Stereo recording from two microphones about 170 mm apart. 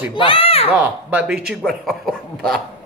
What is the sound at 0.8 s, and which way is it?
Speech, 10° right (ahead or behind).